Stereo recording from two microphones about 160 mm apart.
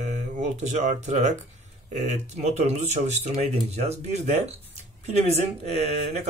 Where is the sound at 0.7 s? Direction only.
50° right (ahead or behind).